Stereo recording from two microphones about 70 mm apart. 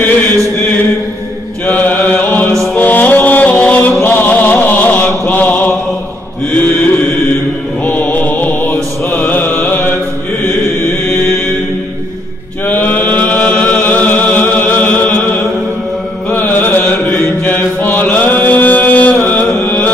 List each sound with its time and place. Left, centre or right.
1.7 s chant: left
2.7 s music: left
6.5 s mantra: left
12.6 s chant: left
16.3 s mantra: left
19.5 s music: left